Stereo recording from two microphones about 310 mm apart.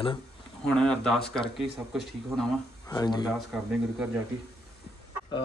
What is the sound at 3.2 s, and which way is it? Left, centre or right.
Speech, centre.